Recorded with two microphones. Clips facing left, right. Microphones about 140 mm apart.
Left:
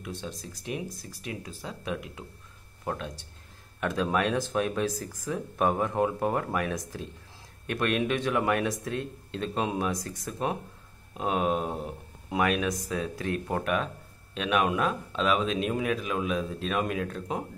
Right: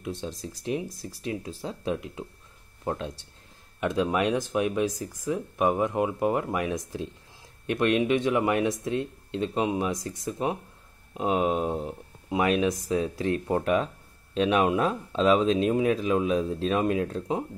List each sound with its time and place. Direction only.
0.0 s speech: 25° right (ahead or behind)